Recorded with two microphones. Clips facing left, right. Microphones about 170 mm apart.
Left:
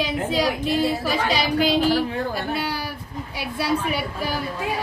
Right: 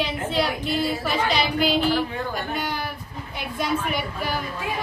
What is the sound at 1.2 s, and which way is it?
Speech, 35° left (ahead or behind).